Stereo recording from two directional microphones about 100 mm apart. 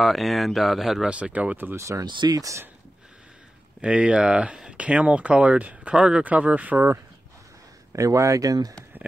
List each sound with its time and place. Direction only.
0.0 s speech: centre (ahead or behind); by 2.0 s 30° right (ahead or behind)
2.0 s speech: 45° right (ahead or behind)
3.8 s speech: 10° right (ahead or behind)
7.9 s speech: 35° right (ahead or behind)